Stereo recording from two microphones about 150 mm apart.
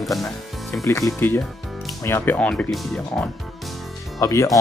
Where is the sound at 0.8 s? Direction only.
20° left (ahead or behind); by 3.2 s centre (ahead or behind).